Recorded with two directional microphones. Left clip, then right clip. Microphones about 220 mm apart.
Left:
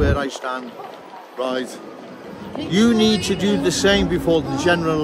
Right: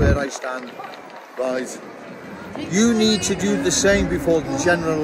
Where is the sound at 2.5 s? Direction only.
55° left (ahead or behind).